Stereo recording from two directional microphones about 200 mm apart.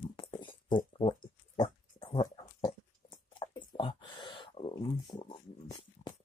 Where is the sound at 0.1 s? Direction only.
25° left (ahead or behind).